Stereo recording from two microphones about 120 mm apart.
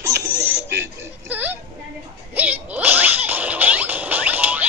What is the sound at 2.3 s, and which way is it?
Whip, 15° right (ahead or behind).